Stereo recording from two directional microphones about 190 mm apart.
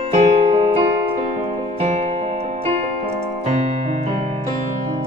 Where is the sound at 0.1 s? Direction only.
35° right (ahead or behind).